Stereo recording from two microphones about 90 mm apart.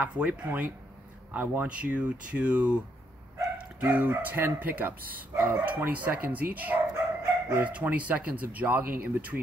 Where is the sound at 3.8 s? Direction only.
15° right (ahead or behind).